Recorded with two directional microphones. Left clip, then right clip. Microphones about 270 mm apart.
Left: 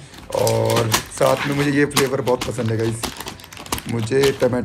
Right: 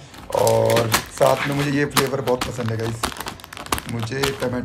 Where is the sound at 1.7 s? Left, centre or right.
Centre.